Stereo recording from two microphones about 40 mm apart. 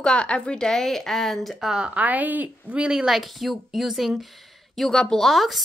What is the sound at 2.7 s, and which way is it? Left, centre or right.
Speech, right.